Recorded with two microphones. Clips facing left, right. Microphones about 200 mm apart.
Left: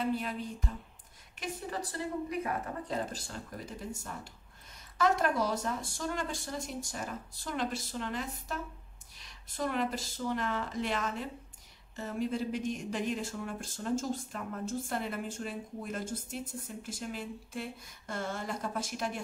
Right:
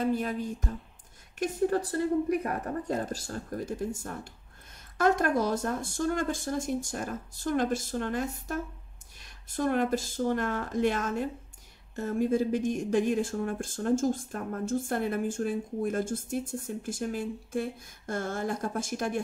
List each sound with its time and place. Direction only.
0.0 s speech: 45° right (ahead or behind)